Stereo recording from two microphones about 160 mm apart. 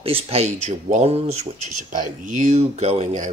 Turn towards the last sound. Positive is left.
turn(degrees=-45)  # may be behind; listen again after turning